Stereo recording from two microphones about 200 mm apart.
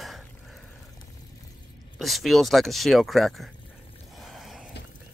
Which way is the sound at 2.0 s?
Centre (ahead or behind).